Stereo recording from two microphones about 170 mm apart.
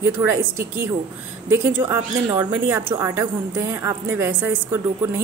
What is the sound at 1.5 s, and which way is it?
A woman's voice, 15° right (ahead or behind).